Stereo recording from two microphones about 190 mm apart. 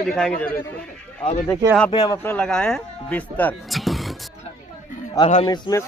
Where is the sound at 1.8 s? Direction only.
20° left (ahead or behind).